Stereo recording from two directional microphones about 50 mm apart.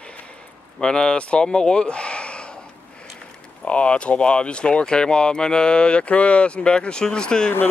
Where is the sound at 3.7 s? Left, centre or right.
Left.